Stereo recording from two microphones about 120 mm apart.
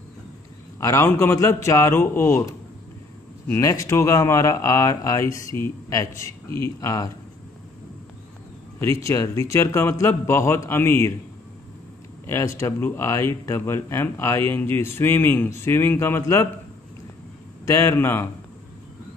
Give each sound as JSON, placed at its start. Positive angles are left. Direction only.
{"t": 0.7, "sound": "speech", "side_deg": 25}
{"t": 8.7, "sound": "speech", "side_deg": 25}
{"t": 12.3, "sound": "speech", "side_deg": 25}
{"t": 17.6, "sound": "speech", "side_deg": 25}